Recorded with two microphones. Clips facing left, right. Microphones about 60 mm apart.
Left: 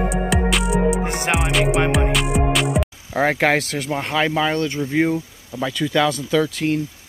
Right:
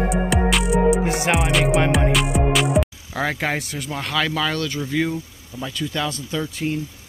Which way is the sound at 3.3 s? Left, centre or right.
Left.